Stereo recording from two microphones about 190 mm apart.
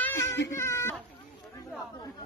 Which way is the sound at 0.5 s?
15° left (ahead or behind).